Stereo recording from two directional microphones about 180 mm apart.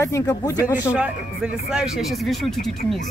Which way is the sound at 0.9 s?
5° right (ahead or behind).